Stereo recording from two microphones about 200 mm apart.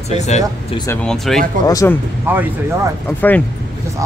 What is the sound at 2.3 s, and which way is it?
Speech, 10° right (ahead or behind).